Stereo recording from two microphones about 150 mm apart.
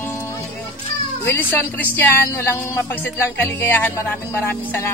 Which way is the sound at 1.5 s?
10° left (ahead or behind).